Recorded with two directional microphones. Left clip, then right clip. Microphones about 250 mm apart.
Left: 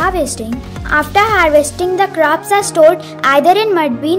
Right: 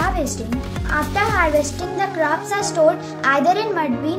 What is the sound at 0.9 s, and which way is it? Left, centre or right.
Speech, left.